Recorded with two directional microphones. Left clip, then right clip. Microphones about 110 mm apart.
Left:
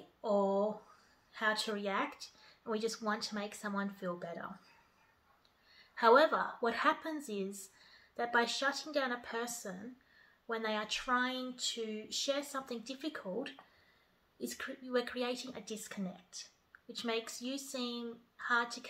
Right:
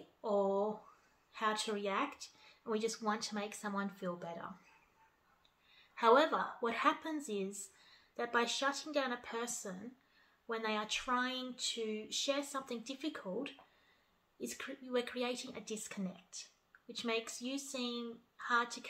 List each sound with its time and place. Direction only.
0.2 s a sound: 10° right (ahead or behind)
1.3 s speech: 15° right (ahead or behind)
5.9 s speech: 15° right (ahead or behind)